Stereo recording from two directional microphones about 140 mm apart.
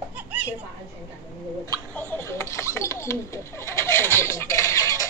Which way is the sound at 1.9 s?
15° left (ahead or behind).